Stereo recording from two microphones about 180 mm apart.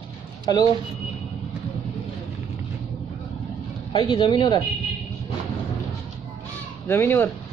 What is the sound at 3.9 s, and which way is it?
Speech, 25° left (ahead or behind).